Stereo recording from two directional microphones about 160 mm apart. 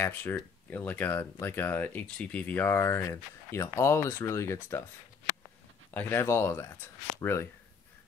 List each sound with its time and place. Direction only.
0.0 s speech: 15° left (ahead or behind)
5.9 s speech: 10° left (ahead or behind)